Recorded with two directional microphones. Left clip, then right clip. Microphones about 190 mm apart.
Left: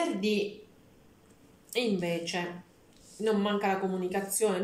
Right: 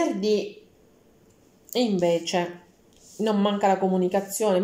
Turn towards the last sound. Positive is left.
turn(degrees=-40)  # may be behind; listen again after turning